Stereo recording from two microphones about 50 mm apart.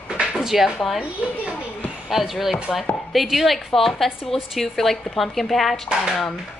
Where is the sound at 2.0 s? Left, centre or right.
Centre.